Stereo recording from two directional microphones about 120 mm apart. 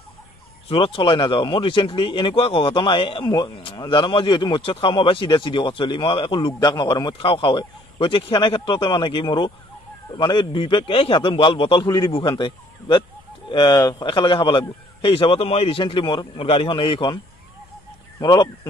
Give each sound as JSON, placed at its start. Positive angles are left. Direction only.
{"t": 0.7, "sound": "speech", "side_deg": 50}
{"t": 12.1, "sound": "speech", "side_deg": 45}
{"t": 18.2, "sound": "speech", "side_deg": 35}